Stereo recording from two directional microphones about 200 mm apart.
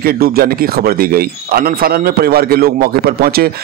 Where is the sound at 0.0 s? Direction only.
50° right (ahead or behind).